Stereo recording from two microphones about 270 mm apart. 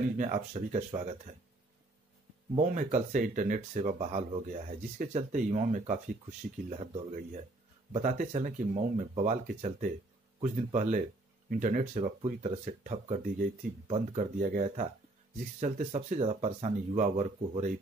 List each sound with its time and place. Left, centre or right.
0.2 s speech: right
2.5 s speech: right